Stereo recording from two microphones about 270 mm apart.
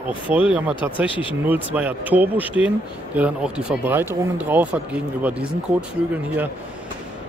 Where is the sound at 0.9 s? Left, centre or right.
Centre.